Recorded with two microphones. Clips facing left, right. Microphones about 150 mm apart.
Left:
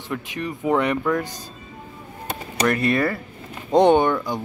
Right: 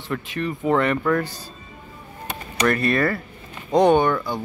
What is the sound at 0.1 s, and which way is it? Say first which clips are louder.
Speech: right 2 dB; 10° left (ahead or behind).